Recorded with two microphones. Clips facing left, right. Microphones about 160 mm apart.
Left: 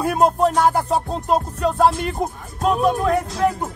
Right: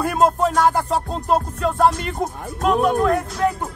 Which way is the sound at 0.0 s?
15° left (ahead or behind).